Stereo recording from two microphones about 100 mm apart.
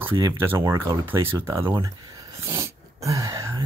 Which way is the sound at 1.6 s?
40° right (ahead or behind).